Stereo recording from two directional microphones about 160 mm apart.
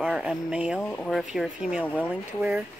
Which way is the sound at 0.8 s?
10° left (ahead or behind).